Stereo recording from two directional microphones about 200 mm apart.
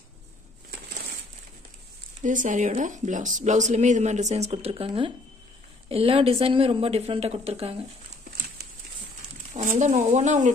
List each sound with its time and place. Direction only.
2.2 s a woman's voice: 40° right (ahead or behind)
9.5 s a woman's voice: 35° right (ahead or behind)